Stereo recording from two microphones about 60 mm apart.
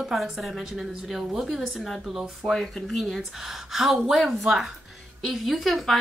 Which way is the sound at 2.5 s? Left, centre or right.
Centre.